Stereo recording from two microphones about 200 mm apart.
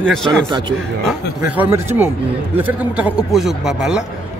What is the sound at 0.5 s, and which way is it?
Speech, 20° right (ahead or behind).